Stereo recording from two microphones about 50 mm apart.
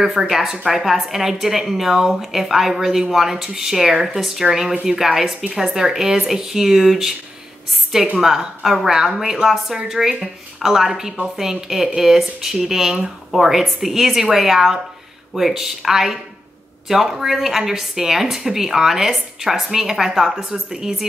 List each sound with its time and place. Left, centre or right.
0.0 s a woman's voice: centre